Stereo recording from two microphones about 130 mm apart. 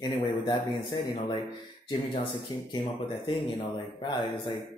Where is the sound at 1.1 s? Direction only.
40° left (ahead or behind).